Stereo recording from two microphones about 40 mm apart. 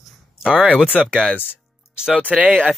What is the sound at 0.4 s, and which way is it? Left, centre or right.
Speech, centre.